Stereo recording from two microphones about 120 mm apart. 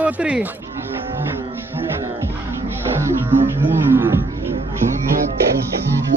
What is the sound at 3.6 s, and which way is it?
Speech, 15° right (ahead or behind).